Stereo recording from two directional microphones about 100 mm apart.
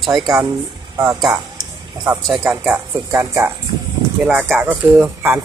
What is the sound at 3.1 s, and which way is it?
Speech, 30° right (ahead or behind).